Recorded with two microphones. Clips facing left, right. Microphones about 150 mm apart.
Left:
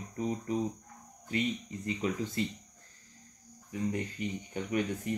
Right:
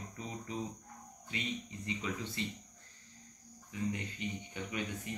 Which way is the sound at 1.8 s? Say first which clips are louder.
Left 7 dB; 40° left (ahead or behind).